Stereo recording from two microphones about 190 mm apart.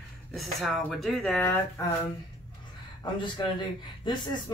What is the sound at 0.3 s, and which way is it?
Speech, centre (ahead or behind).